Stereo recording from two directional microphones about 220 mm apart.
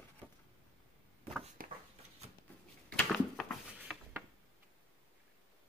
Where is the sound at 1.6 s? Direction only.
40° right (ahead or behind).